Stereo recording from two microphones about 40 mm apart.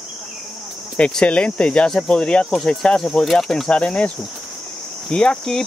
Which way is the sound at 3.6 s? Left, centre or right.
Left.